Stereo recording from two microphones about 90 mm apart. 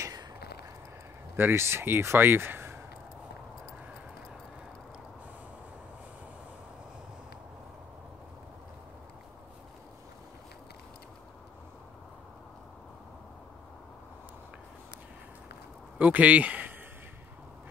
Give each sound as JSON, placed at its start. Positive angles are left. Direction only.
{"t": 1.3, "sound": "speech", "side_deg": -25}
{"t": 16.0, "sound": "speech", "side_deg": -15}